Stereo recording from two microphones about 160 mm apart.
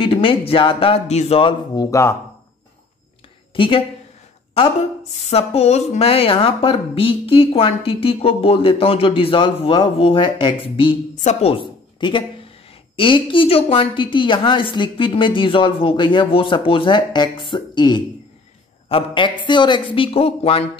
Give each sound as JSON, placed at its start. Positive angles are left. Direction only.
{"t": 0.0, "sound": "speech", "side_deg": 35}
{"t": 1.8, "sound": "speech", "side_deg": 20}
{"t": 3.5, "sound": "speech", "side_deg": 30}
{"t": 5.2, "sound": "speech", "side_deg": 40}